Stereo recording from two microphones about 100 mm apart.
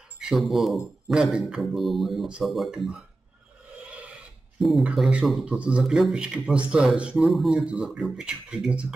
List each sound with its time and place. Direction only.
0.2 s a man's voice: centre (ahead or behind)
4.6 s speech: centre (ahead or behind)